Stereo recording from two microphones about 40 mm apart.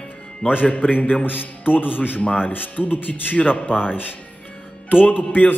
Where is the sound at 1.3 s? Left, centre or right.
Left.